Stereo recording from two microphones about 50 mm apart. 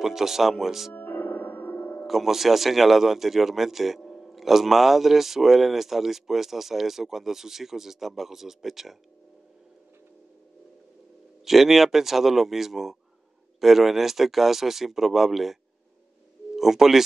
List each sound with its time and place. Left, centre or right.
0.0 s speech: centre
0.9 s music: left
2.0 s a man's voice: centre
11.4 s a man's voice: centre
16.5 s speech: centre